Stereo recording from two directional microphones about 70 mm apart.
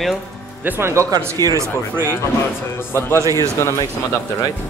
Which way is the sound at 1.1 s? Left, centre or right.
Right.